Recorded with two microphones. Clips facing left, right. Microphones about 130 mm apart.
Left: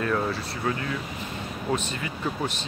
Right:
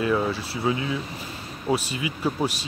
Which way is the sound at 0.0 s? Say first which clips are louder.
Right 3 dB; 5° right (ahead or behind).